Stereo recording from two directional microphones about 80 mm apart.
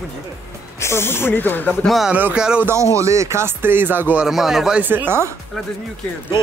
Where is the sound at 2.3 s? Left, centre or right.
Centre.